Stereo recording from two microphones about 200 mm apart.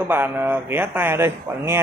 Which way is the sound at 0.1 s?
10° right (ahead or behind).